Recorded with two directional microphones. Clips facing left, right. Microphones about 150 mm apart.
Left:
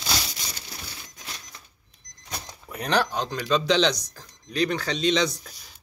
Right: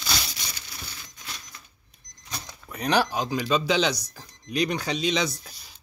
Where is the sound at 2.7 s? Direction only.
Centre (ahead or behind).